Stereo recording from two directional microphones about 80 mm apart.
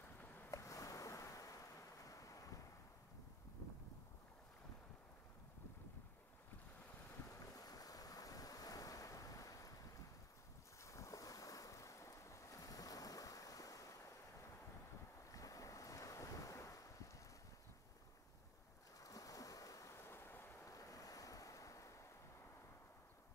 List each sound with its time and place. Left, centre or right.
0.0 s vehicle: left
0.5 s ocean: left
7.2 s waves: left
18.9 s waves: left
20.6 s waves: left